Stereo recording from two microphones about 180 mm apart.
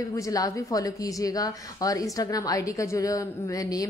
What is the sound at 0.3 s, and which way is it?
A woman's voice, 20° left (ahead or behind).